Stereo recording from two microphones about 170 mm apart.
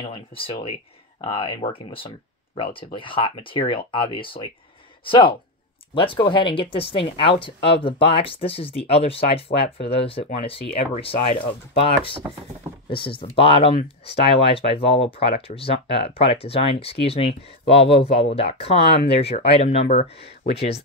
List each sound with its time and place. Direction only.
0.0 s speech: 30° left (ahead or behind)